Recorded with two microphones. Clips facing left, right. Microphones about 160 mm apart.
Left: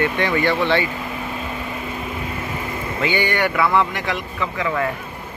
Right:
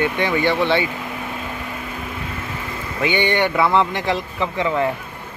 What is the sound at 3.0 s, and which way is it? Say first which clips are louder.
A man's voice: right 2 dB; 20° right (ahead or behind).